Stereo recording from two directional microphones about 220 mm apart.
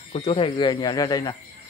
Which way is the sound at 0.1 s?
25° left (ahead or behind).